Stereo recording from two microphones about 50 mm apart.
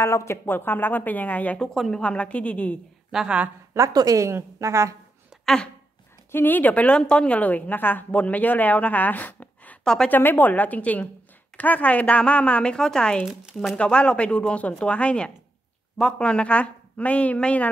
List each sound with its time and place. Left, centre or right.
0.0 s speech: left
0.5 s a woman's voice: left
1.6 s speech: centre
2.0 s a woman's voice: left
3.1 s a woman's voice: centre
3.7 s a woman's voice: right
5.4 s a sound: centre
6.3 s a woman's voice: left
12.7 s a woman's voice: centre